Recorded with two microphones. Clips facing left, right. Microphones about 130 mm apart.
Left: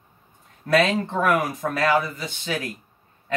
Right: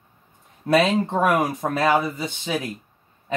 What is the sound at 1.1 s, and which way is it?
Speech, 15° right (ahead or behind).